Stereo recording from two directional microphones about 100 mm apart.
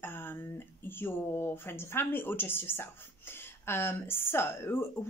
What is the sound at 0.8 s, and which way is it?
Speech, 20° left (ahead or behind).